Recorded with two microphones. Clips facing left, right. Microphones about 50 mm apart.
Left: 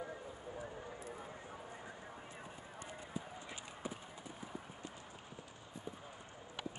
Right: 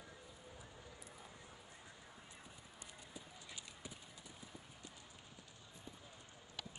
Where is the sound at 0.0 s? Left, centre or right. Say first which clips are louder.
Left 11 dB; left.